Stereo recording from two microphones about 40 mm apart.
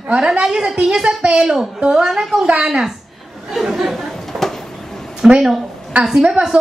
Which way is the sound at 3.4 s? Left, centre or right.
Centre.